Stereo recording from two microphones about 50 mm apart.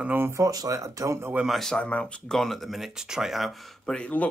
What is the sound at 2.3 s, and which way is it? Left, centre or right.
Speech, centre.